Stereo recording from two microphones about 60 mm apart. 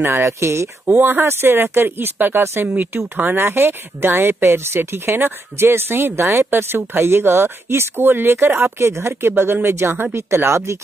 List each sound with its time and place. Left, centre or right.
0.0 s speech: right
0.9 s speech: right